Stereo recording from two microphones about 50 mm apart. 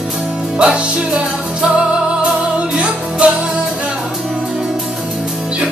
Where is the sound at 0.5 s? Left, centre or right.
Right.